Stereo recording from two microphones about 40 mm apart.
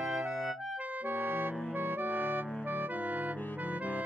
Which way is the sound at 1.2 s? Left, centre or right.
Right.